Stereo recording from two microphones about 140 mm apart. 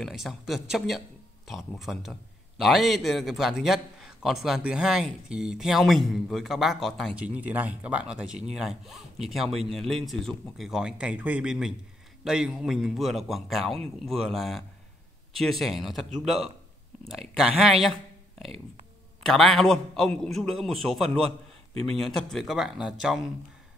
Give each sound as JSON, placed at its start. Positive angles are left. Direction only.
{"t": 0.0, "sound": "a man's voice", "side_deg": 0}
{"t": 19.2, "sound": "a man's voice", "side_deg": 0}